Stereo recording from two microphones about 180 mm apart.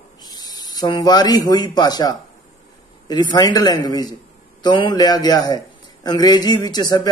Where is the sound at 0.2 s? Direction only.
20° left (ahead or behind).